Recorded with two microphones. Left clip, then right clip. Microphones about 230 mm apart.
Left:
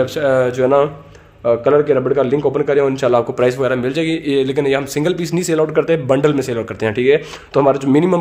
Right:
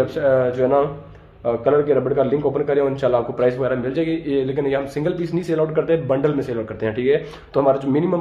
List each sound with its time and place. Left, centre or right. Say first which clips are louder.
0.0 s a man's voice: left 3 dB; left